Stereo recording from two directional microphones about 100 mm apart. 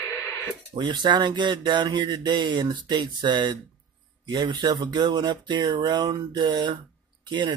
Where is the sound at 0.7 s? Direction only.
50° right (ahead or behind).